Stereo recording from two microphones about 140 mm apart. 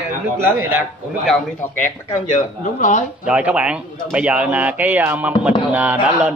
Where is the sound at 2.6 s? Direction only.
60° left (ahead or behind).